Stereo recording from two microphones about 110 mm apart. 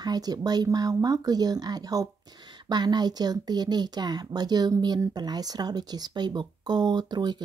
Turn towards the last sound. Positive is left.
turn(degrees=-40)  # may be behind; listen again after turning